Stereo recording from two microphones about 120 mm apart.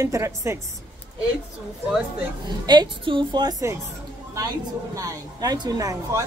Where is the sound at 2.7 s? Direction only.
40° right (ahead or behind).